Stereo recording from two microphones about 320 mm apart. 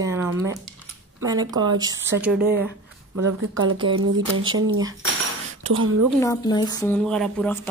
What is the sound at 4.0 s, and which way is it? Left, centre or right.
Speech, right.